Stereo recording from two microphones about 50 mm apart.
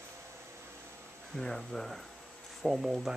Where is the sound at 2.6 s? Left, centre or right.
Centre.